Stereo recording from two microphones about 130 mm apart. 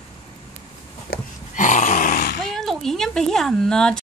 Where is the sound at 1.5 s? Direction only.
75° left (ahead or behind); by 2.2 s 90° left.